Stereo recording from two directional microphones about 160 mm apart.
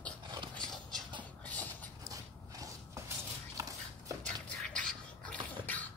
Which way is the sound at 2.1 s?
20° right (ahead or behind).